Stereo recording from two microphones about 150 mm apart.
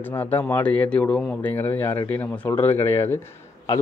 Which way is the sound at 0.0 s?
10° left (ahead or behind).